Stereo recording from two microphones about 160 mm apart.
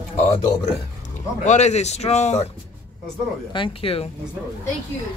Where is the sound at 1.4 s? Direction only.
45° left (ahead or behind).